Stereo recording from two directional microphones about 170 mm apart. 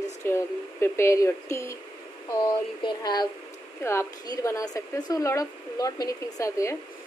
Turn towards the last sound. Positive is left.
turn(degrees=20)  # may be behind; listen again after turning